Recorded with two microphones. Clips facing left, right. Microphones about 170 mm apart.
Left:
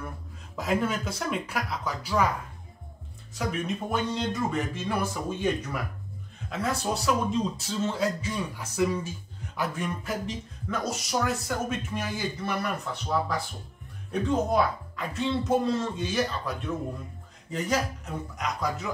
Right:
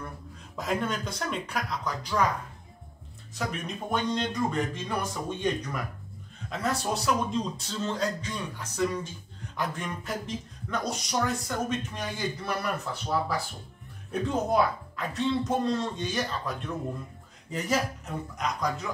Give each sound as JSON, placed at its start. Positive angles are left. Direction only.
{"t": 0.6, "sound": "speech", "side_deg": 0}
{"t": 3.3, "sound": "speech", "side_deg": 5}